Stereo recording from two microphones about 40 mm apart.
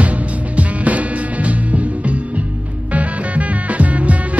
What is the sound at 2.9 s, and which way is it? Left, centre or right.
Music, right.